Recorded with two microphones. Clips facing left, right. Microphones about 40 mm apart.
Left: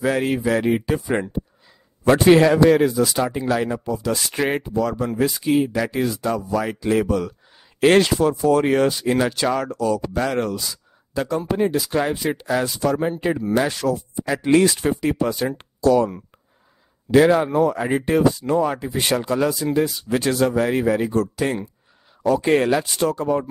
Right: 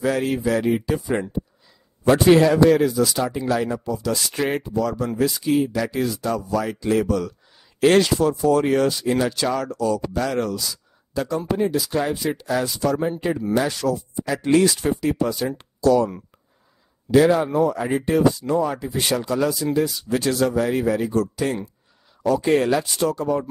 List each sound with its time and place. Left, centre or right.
0.0 s speech: left
17.1 s speech: left